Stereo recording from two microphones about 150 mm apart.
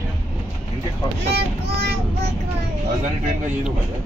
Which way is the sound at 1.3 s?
90° right.